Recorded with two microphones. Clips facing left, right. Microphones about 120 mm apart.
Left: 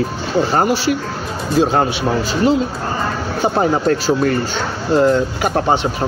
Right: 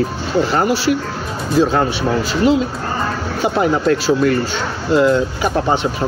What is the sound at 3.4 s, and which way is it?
Speech, 35° left (ahead or behind).